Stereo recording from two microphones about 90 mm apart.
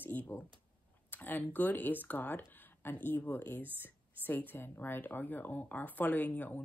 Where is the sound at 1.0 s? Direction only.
20° left (ahead or behind).